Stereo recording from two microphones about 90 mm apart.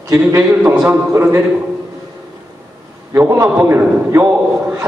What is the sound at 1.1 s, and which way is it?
Speech, 25° right (ahead or behind).